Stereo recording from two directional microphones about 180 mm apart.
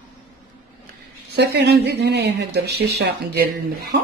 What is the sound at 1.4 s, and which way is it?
Speech, 70° right (ahead or behind).